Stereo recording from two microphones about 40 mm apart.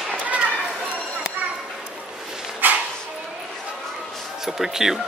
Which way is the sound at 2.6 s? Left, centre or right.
Right.